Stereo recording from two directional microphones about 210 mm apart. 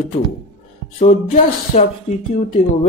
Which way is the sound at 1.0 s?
30° left (ahead or behind).